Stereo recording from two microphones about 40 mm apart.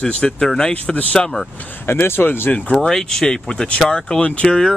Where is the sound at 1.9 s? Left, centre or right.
Left.